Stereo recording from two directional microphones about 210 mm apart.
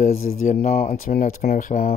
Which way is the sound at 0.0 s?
35° left (ahead or behind).